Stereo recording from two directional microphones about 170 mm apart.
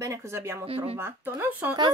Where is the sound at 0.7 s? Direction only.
35° right (ahead or behind).